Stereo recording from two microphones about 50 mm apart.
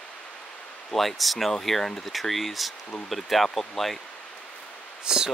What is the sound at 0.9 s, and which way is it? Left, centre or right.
Speech, centre.